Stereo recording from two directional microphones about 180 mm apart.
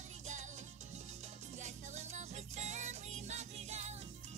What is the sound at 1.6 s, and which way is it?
Music, 40° right (ahead or behind).